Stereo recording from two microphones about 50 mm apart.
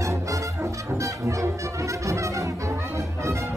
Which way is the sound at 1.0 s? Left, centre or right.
Right.